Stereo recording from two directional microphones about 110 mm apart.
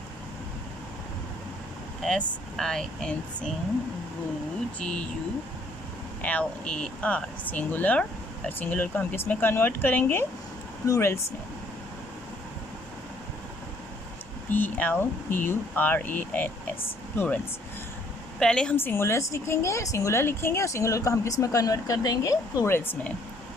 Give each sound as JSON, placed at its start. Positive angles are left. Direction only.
{"t": 2.0, "sound": "speech", "side_deg": 5}
{"t": 4.7, "sound": "speech", "side_deg": 10}
{"t": 6.2, "sound": "a woman's voice", "side_deg": 10}
{"t": 14.5, "sound": "speech", "side_deg": 15}
{"t": 18.4, "sound": "a woman's voice", "side_deg": 10}